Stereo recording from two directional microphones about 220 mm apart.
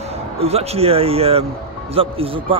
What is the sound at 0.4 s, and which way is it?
Speech, 30° right (ahead or behind).